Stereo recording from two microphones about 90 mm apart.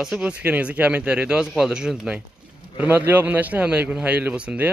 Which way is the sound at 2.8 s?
20° right (ahead or behind).